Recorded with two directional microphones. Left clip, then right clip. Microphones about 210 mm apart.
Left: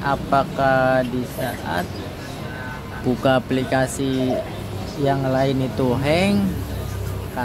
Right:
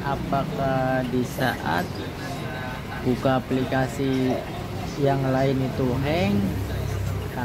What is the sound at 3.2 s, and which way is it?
Speech, 10° left (ahead or behind).